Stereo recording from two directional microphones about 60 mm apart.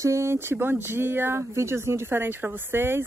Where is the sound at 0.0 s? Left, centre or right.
Right.